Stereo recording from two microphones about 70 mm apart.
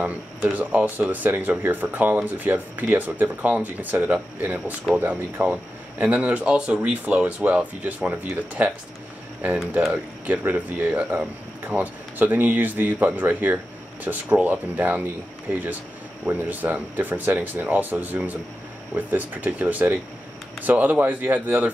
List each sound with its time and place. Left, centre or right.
0.4 s speech: right
10.2 s speech: right
16.3 s speech: right